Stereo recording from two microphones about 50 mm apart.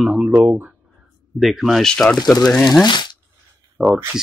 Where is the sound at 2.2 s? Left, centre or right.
Centre.